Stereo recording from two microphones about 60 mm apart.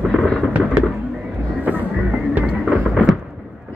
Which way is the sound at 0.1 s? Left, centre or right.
Centre.